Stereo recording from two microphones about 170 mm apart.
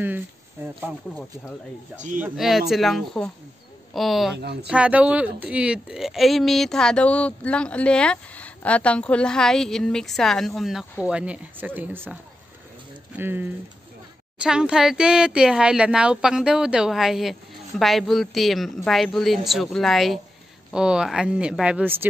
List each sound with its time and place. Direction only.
0.6 s speech: 15° right (ahead or behind)
2.1 s a woman's voice: 5° right (ahead or behind)
4.4 s speech: 70° right (ahead or behind)
4.6 s a woman's voice: 5° right (ahead or behind)